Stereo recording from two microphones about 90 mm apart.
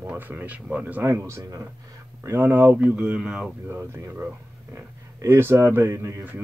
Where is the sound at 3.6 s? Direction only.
25° right (ahead or behind).